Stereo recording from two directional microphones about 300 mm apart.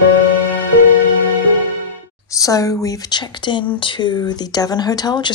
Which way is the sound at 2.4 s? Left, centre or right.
Centre.